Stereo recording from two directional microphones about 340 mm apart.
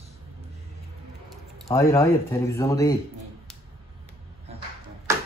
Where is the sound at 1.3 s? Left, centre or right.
Centre.